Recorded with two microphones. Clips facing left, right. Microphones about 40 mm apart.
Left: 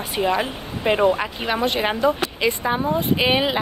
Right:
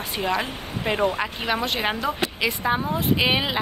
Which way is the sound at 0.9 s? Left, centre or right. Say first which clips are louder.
Left 5 dB; left.